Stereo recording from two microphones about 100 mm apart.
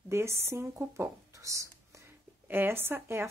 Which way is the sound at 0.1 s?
25° right (ahead or behind).